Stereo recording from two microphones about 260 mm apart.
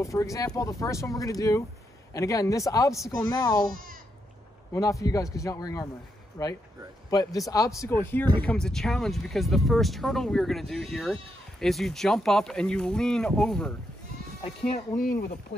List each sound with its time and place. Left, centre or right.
0.0 s speech: centre
3.7 s speech: right
4.7 s speech: centre
15.0 s speech: left